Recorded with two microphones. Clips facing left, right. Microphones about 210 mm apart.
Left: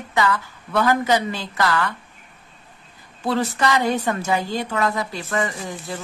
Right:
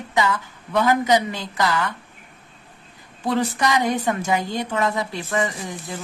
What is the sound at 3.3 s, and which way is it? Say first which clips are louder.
A woman's voice: even; 15° right (ahead or behind).